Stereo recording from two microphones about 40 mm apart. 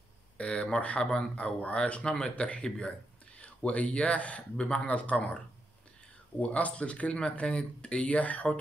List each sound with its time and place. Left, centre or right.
0.4 s speech: left
2.3 s speech: left
6.4 s speech: left